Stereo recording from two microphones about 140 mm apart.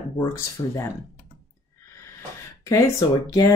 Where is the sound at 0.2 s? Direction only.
20° left (ahead or behind).